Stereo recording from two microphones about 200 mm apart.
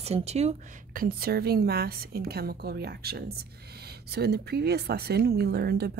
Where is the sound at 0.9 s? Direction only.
45° right (ahead or behind).